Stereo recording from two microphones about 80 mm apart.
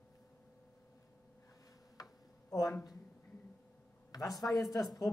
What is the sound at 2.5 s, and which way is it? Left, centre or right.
Speech, left.